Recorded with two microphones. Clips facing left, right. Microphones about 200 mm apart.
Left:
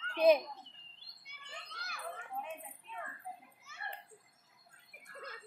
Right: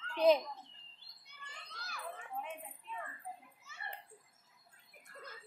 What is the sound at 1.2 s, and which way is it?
Bird, 65° left (ahead or behind).